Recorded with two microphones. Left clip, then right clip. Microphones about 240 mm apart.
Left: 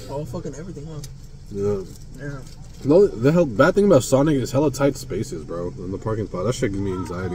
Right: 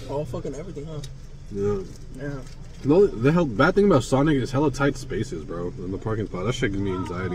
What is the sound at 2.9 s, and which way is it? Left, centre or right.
Speech, centre.